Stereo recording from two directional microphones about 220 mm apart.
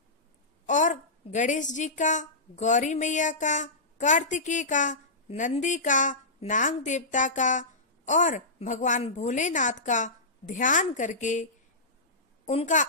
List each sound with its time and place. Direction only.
0.7 s a woman's voice: 35° left (ahead or behind)
12.4 s a woman's voice: 35° left (ahead or behind)